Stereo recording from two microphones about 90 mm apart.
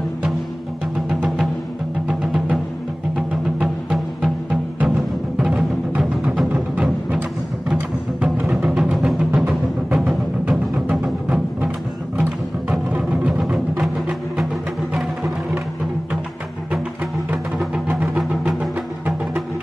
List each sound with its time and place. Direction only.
2.0 s music: 5° right (ahead or behind)
12.9 s music: 10° right (ahead or behind)
17.8 s music: 15° right (ahead or behind)
18.3 s music: 5° right (ahead or behind)